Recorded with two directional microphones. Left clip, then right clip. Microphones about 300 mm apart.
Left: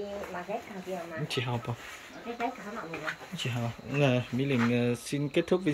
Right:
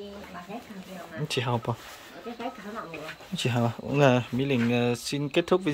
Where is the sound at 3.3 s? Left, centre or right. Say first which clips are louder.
Right 7 dB; centre.